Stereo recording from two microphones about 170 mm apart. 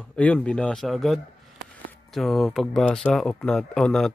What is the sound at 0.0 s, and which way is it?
Speech, 10° left (ahead or behind).